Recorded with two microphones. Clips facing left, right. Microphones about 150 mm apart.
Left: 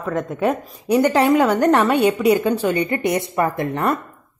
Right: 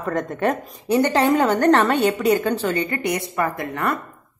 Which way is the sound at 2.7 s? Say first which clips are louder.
Left 3 dB; 25° left (ahead or behind).